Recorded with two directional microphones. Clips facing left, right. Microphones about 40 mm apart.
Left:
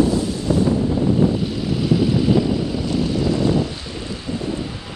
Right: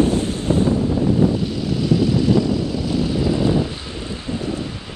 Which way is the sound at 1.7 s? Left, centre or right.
Centre.